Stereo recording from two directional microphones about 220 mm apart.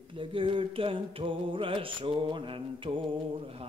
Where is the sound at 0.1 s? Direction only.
25° right (ahead or behind).